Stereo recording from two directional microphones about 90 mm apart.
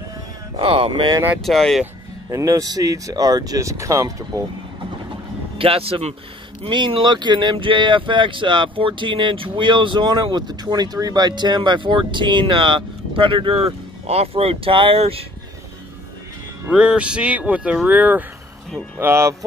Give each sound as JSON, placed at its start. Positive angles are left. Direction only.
{"t": 0.6, "sound": "speech", "side_deg": -90}
{"t": 1.4, "sound": "speech", "side_deg": 5}
{"t": 2.3, "sound": "speech", "side_deg": -40}
{"t": 5.6, "sound": "speech", "side_deg": -90}
{"t": 6.6, "sound": "speech", "side_deg": -75}
{"t": 16.6, "sound": "speech", "side_deg": -10}
{"t": 18.9, "sound": "speech", "side_deg": -30}